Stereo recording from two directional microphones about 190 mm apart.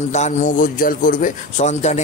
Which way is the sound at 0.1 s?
40° left (ahead or behind).